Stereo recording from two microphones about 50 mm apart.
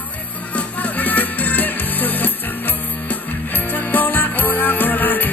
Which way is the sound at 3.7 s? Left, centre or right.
Left.